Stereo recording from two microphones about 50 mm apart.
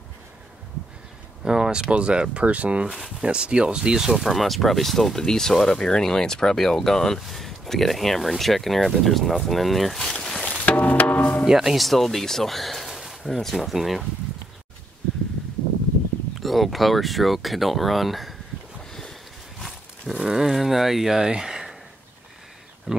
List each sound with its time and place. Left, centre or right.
1.4 s speech: centre
10.2 s music: centre
10.6 s music: left
11.4 s speech: centre
16.3 s speech: centre
18.9 s a sound: centre
20.2 s speech: centre
22.9 s speech: centre